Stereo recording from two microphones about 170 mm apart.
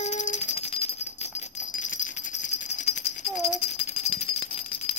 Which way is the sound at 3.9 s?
35° left (ahead or behind).